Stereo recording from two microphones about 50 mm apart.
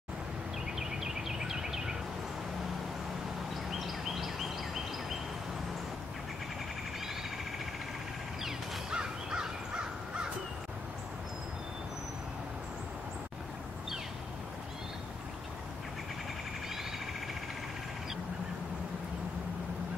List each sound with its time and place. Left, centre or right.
0.7 s a sound: centre
3.8 s bird: centre
8.9 s crow: centre